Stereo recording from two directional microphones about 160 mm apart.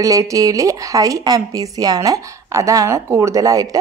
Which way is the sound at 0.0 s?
20° right (ahead or behind).